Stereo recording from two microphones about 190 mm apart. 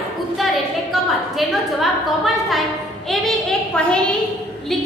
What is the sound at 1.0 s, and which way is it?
A woman's voice, centre (ahead or behind).